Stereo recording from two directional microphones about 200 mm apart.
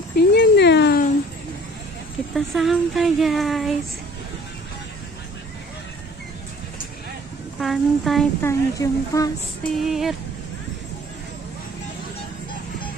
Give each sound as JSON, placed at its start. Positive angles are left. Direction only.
{"t": 0.1, "sound": "a sound", "side_deg": 55}
{"t": 2.3, "sound": "speech", "side_deg": 0}
{"t": 7.6, "sound": "speech", "side_deg": 0}
{"t": 8.4, "sound": "speech", "side_deg": 15}
{"t": 9.8, "sound": "speech", "side_deg": 0}